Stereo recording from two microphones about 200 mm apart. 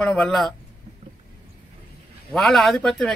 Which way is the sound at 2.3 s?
Centre (ahead or behind).